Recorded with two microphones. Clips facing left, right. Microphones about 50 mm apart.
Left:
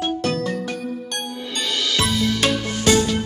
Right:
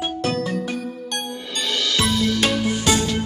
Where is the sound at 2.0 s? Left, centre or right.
Centre.